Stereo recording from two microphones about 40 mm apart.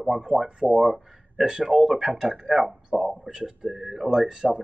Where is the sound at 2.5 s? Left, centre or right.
Centre.